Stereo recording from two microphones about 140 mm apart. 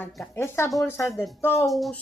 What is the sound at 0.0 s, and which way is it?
A woman's voice, 15° left (ahead or behind).